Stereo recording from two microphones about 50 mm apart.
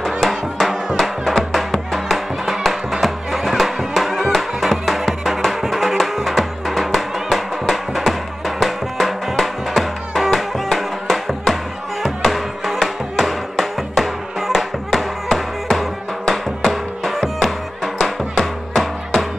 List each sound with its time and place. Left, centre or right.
0.2 s music: centre